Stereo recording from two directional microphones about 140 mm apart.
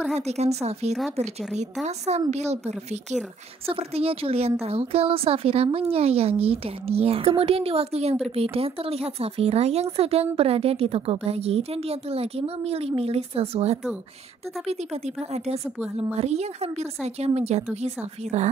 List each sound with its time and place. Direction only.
0.1 s speech: 50° right (ahead or behind)